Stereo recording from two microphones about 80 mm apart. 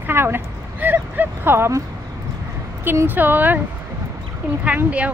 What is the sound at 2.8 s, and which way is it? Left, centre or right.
Speech, right.